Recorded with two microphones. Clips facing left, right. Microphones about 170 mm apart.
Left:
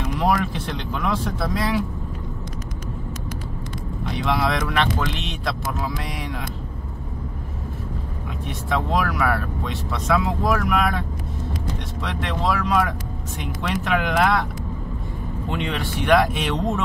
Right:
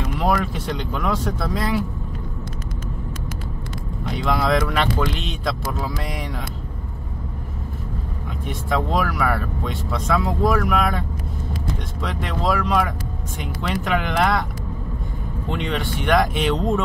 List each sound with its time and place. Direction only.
1.0 s speech: centre (ahead or behind)
4.2 s speech: centre (ahead or behind)
8.6 s speech: centre (ahead or behind)
12.0 s speech: centre (ahead or behind)
15.5 s speech: 5° left (ahead or behind)